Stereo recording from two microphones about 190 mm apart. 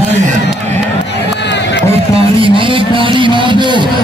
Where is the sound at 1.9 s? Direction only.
30° right (ahead or behind).